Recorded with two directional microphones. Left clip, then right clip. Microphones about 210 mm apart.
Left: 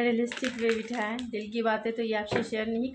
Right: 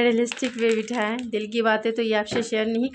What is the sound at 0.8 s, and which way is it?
A woman's voice, 50° right (ahead or behind).